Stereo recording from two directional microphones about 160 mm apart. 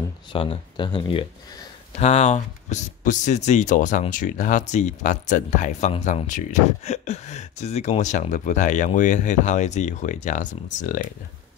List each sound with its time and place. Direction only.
0.3 s speech: 35° left (ahead or behind); by 11.1 s 50° left (ahead or behind)